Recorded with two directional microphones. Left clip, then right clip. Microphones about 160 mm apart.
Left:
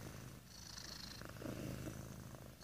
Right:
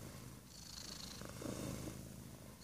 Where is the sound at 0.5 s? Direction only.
20° right (ahead or behind).